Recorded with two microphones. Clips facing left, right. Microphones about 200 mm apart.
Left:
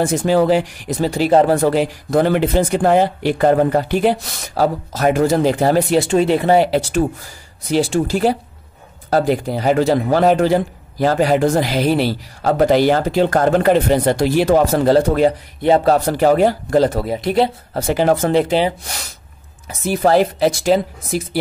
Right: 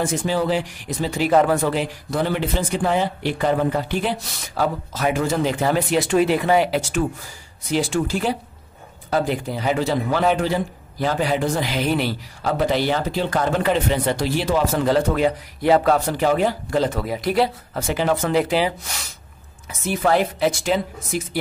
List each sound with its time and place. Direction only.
0.2 s speech: 50° left (ahead or behind); by 16.2 s 30° left (ahead or behind)
16.2 s speech: 45° left (ahead or behind); by 17.5 s 25° left (ahead or behind)
17.7 s speech: 35° left (ahead or behind)
18.3 s speech: 25° left (ahead or behind)